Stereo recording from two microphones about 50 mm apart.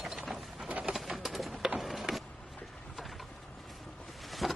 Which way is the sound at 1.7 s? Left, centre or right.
Centre.